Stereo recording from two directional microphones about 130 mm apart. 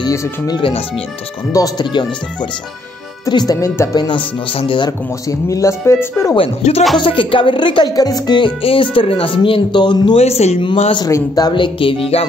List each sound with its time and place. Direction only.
0.0 s speech: 25° left (ahead or behind)
0.6 s a man's voice: 45° left (ahead or behind)
1.5 s speech: 30° left (ahead or behind)
3.3 s speech: 30° left (ahead or behind)
4.5 s speech: 40° left (ahead or behind)
5.5 s speech: 25° left (ahead or behind)
6.6 s speech: 60° left (ahead or behind)
7.0 s speech: 40° left (ahead or behind)
10.1 s a man's voice: 50° left (ahead or behind)
11.0 s speech: 25° left (ahead or behind); by 12.3 s 50° left (ahead or behind)